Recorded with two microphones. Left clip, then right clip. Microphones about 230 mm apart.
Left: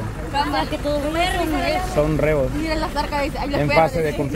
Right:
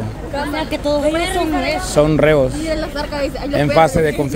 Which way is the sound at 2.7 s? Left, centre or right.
Centre.